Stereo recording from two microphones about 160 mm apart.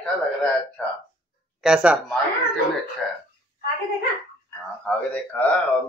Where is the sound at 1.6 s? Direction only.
5° right (ahead or behind).